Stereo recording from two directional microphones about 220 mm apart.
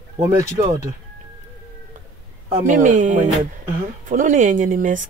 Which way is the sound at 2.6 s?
35° right (ahead or behind).